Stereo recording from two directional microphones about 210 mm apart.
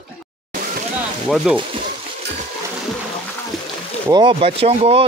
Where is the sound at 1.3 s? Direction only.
Centre (ahead or behind).